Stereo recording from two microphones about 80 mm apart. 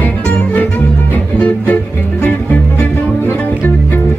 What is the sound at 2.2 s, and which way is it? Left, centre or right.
Music, centre.